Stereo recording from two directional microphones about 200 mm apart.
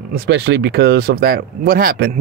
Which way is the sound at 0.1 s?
55° right (ahead or behind).